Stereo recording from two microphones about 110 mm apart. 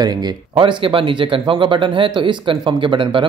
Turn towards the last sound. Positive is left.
turn(degrees=-50)  # may be behind; listen again after turning